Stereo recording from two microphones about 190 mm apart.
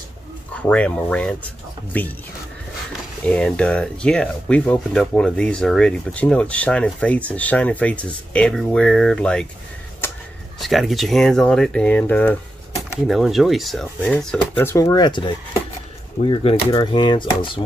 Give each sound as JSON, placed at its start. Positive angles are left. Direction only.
{"t": 0.6, "sound": "speech", "side_deg": 5}
{"t": 3.3, "sound": "speech", "side_deg": 5}
{"t": 10.0, "sound": "a sound", "side_deg": 10}
{"t": 10.6, "sound": "speech", "side_deg": 0}
{"t": 13.0, "sound": "speech", "side_deg": 0}